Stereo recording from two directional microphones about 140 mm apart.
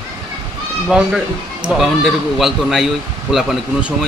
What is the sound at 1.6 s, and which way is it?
Speech, centre (ahead or behind).